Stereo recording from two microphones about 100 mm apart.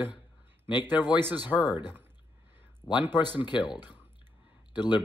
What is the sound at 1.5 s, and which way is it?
Speech, 20° right (ahead or behind).